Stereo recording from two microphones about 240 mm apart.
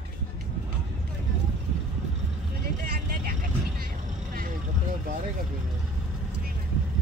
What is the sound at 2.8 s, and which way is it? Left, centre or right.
Vehicle, right.